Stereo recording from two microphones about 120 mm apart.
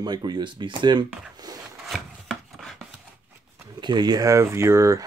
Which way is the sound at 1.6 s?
Centre (ahead or behind).